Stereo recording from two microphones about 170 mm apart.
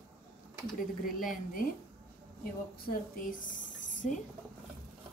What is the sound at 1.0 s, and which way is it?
Speech, 55° left (ahead or behind).